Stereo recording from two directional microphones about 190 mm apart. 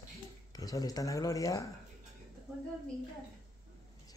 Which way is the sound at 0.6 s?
20° left (ahead or behind).